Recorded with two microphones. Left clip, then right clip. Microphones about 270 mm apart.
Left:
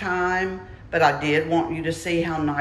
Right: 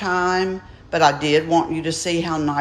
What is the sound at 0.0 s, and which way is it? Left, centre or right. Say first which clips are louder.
Speech: right 3 dB; centre.